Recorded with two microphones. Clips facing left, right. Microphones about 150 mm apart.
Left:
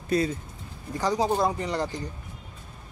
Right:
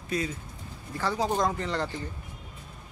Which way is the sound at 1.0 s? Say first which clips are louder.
Left 3 dB; 15° left (ahead or behind).